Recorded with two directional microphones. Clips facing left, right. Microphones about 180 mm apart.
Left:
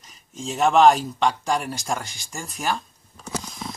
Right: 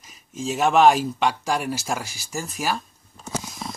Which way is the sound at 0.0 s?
5° right (ahead or behind).